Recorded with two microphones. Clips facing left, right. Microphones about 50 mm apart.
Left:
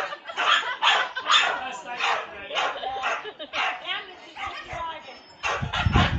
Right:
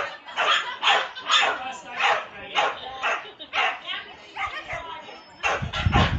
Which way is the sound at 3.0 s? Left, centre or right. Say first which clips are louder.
Right 1 dB; right.